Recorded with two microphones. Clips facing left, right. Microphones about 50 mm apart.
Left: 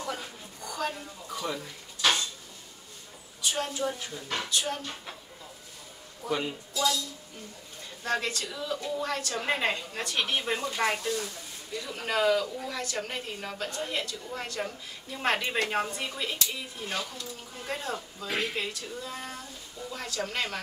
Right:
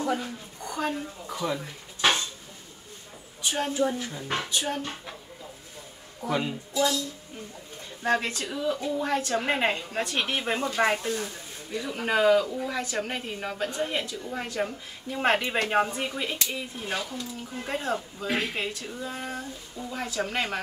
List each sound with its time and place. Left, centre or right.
0.7 s speech: right
2.0 s dishes: right
3.5 s speech: right
6.7 s speech: right
8.0 s a woman's voice: right
18.3 s speech: centre